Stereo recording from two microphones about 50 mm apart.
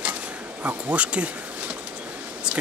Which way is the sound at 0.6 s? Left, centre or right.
Right.